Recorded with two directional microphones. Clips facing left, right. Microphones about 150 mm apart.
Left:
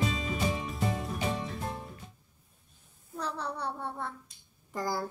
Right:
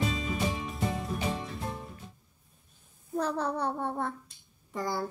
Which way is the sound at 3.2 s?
45° right (ahead or behind).